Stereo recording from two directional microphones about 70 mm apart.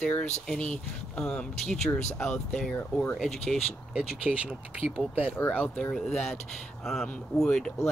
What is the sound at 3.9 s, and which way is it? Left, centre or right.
Speech, centre.